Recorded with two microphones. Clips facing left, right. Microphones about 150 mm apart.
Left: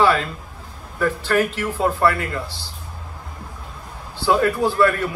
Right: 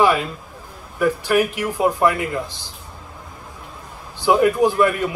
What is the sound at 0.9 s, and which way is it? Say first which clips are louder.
A man's voice: right 2 dB; 15° right (ahead or behind).